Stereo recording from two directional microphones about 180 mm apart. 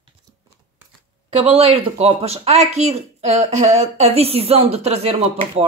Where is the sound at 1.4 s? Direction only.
35° right (ahead or behind).